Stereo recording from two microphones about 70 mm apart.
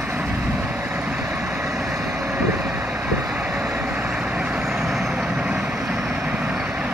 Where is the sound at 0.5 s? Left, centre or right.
Centre.